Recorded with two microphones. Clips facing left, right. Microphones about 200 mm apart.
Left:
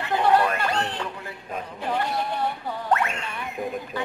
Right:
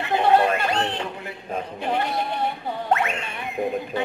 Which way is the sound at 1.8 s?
20° right (ahead or behind).